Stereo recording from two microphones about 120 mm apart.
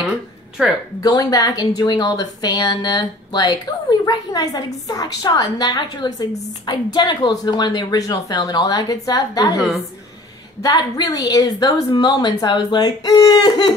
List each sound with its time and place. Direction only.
0.6 s a woman's voice: 10° right (ahead or behind)
1.0 s a woman's voice: 35° left (ahead or behind)
10.6 s a woman's voice: 30° left (ahead or behind)